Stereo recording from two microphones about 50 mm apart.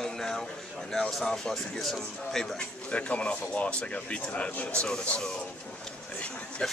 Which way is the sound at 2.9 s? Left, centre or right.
Left.